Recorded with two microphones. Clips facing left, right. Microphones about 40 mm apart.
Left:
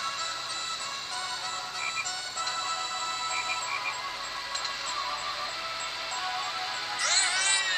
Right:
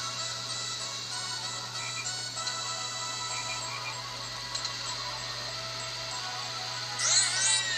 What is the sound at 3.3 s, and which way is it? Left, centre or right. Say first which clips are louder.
Music: left 5 dB; left.